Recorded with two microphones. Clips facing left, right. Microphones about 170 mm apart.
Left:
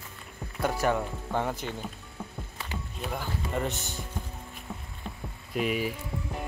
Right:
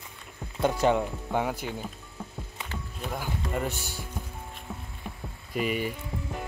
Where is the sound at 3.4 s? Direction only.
5° right (ahead or behind).